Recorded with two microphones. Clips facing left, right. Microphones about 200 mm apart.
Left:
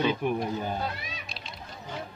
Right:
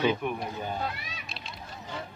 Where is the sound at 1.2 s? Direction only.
Centre (ahead or behind).